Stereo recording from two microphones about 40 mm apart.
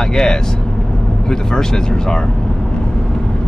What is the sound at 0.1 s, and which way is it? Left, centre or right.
Speech, centre.